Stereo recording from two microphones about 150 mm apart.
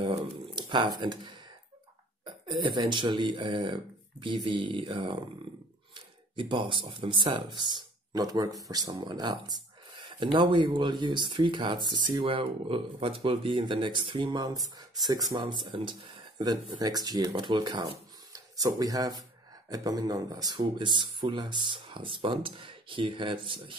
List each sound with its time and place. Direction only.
0.0 s speech: 35° right (ahead or behind)